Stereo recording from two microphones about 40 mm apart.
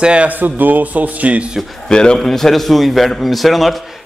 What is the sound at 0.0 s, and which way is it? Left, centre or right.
Speech, right.